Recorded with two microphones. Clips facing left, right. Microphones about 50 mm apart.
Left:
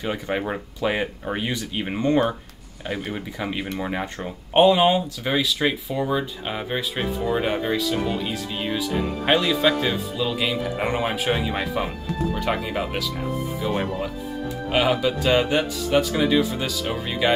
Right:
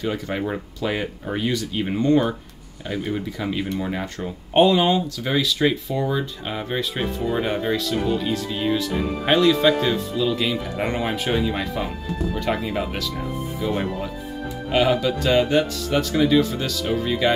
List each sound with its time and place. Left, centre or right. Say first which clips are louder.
0.0 s speech: even; centre